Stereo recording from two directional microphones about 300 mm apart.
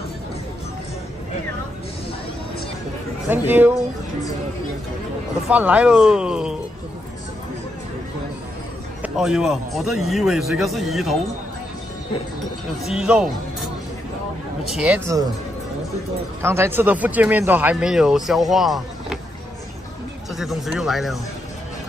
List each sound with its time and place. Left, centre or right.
3.3 s speech: centre
5.5 s speech: centre
9.0 s speech: centre
12.8 s speech: centre
14.6 s speech: centre
16.4 s speech: centre
20.3 s speech: centre